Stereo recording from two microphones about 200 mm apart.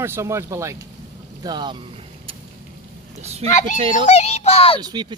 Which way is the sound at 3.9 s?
35° left (ahead or behind).